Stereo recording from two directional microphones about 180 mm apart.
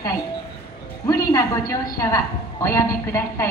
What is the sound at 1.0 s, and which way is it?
A woman's voice, 20° left (ahead or behind).